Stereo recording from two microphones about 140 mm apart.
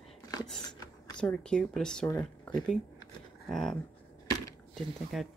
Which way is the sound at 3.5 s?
Centre (ahead or behind).